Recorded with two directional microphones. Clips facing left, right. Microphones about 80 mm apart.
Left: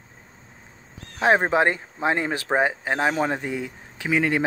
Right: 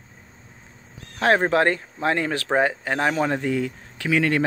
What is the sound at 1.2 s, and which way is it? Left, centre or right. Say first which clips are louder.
Speech: even; centre.